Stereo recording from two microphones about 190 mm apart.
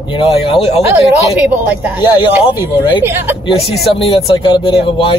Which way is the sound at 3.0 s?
10° right (ahead or behind).